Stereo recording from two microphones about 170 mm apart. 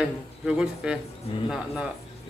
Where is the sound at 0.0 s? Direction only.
5° right (ahead or behind).